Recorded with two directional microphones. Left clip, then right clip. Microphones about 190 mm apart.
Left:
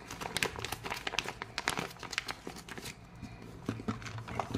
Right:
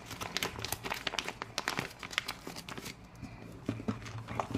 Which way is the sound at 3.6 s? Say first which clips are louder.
Even; 35° left (ahead or behind).